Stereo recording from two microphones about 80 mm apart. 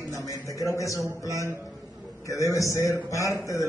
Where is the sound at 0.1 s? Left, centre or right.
Left.